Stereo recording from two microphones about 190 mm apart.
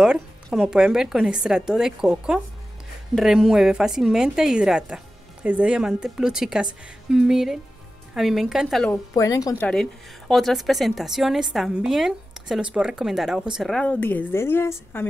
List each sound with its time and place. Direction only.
0.0 s a woman's voice: 5° right (ahead or behind)
8.9 s a woman's voice: 15° left (ahead or behind)
9.7 s a woman's voice: 5° left (ahead or behind)